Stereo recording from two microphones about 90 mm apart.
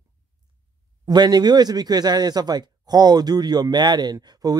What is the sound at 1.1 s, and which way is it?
Speech, 50° right (ahead or behind).